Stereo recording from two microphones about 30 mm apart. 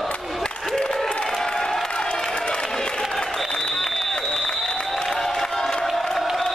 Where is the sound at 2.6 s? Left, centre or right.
Left.